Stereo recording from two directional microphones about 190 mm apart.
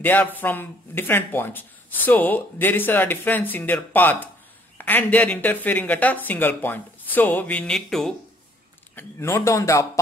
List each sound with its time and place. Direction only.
0.0 s speech: 10° left (ahead or behind)
8.9 s speech: 15° left (ahead or behind)